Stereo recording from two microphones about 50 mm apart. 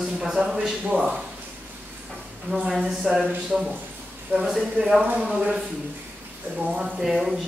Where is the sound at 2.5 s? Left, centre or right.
Right.